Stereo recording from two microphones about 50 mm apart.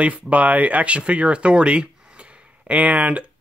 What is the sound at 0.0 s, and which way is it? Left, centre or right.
Speech, right.